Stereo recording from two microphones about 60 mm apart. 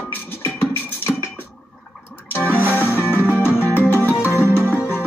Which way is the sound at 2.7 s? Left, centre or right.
Left.